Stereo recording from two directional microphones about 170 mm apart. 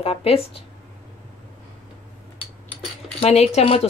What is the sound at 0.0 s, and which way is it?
Speech, 35° left (ahead or behind).